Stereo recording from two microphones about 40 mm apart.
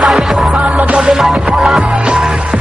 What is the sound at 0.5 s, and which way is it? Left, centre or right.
Music, right.